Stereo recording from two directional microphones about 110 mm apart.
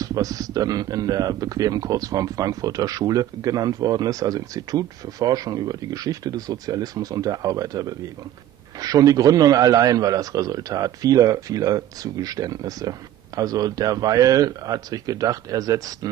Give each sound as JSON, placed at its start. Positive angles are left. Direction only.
{"t": 0.0, "sound": "speech", "side_deg": -35}